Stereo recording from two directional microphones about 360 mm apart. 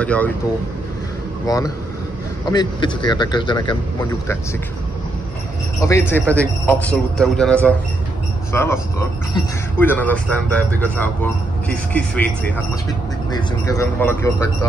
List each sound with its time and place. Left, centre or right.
0.0 s a man's voice: centre
1.5 s speech: centre
5.8 s a man's voice: centre
13.3 s speech: centre